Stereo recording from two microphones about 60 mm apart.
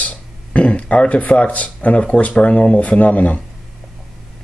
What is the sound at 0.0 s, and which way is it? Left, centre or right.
Speech, left.